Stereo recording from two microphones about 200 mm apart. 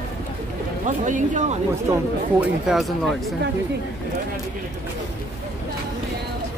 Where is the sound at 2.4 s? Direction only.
Centre (ahead or behind).